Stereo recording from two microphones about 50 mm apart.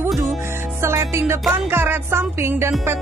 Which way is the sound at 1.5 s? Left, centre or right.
Right.